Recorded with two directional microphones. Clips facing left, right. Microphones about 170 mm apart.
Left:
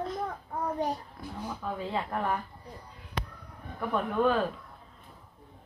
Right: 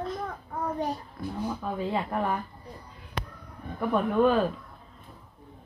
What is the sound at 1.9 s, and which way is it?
Speech, 10° right (ahead or behind).